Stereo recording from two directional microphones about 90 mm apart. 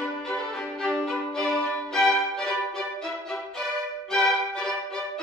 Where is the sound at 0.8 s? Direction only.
5° left (ahead or behind).